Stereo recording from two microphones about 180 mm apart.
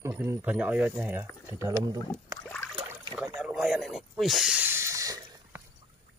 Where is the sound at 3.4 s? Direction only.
5° right (ahead or behind).